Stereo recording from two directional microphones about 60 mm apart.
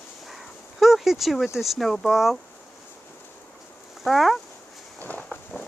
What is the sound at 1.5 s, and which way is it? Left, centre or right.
Speech, centre.